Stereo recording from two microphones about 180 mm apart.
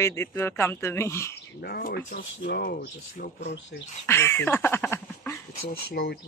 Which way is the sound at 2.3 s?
75° left (ahead or behind).